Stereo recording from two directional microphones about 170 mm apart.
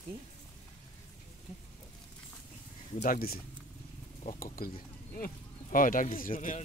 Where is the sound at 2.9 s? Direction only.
50° left (ahead or behind).